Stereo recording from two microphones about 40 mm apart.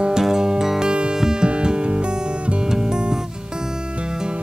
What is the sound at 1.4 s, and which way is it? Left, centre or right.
Music, right.